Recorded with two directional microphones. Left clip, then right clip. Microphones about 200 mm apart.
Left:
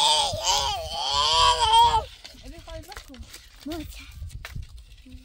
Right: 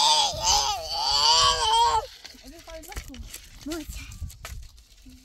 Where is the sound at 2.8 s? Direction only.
30° left (ahead or behind).